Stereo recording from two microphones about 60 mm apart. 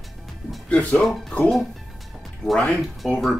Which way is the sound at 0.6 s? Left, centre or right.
Centre.